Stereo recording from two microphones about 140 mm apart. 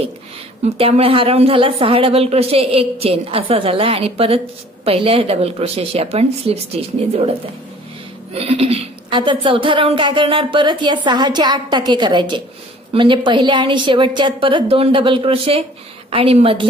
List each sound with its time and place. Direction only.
0.7 s speech: 45° right (ahead or behind)
8.3 s a woman's voice: 45° right (ahead or behind)